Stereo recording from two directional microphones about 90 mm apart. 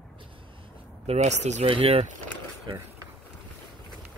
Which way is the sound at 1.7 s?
90° right.